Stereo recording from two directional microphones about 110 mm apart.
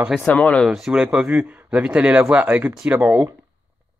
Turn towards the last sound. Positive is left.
turn(degrees=-20)  # may be behind; listen again after turning